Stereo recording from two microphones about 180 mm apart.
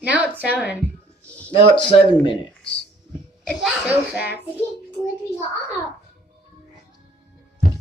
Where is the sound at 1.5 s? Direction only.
30° left (ahead or behind).